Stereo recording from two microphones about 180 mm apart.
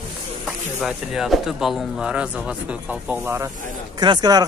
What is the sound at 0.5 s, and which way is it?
Speech, 5° right (ahead or behind).